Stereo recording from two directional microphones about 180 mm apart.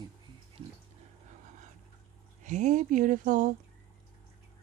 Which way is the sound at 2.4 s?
40° right (ahead or behind).